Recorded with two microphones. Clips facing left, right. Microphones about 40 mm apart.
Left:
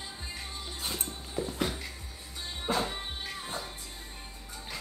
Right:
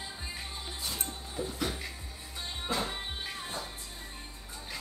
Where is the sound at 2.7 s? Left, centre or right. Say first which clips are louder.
Left 2 dB; centre.